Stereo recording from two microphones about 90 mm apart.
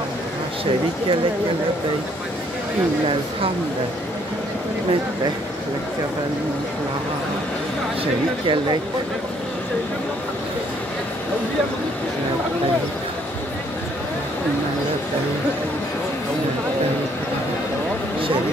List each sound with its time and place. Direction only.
8.0 s speech: 70° right (ahead or behind)